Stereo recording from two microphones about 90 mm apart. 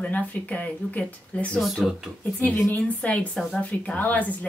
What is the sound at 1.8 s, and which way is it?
Speech, centre (ahead or behind).